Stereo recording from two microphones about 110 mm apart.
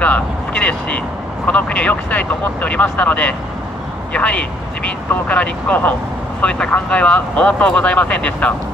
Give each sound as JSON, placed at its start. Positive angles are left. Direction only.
{"t": 0.0, "sound": "speech", "side_deg": 15}